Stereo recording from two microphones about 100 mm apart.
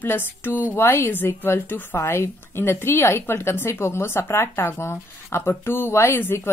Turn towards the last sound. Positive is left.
turn(degrees=20)  # may be behind; listen again after turning